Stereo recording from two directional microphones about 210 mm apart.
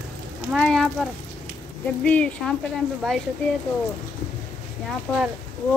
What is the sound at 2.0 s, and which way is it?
Speech, 5° left (ahead or behind).